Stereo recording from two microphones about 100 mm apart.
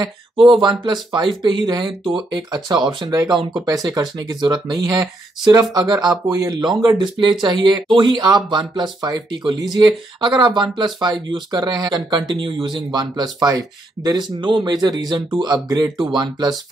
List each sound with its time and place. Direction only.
0.6 s speech: 50° right (ahead or behind)